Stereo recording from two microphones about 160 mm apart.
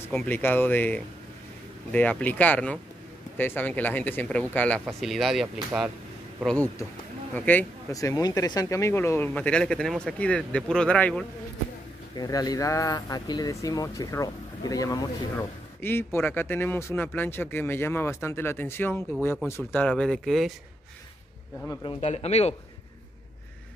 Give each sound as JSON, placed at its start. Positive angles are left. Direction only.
{"t": 0.1, "sound": "speech", "side_deg": 10}
{"t": 12.2, "sound": "speech", "side_deg": 25}
{"t": 21.8, "sound": "speech", "side_deg": 40}